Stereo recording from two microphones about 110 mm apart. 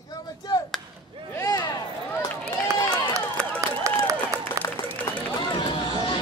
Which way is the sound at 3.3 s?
30° right (ahead or behind).